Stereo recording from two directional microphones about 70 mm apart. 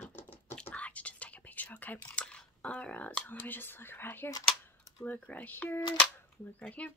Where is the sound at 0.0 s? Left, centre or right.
Left.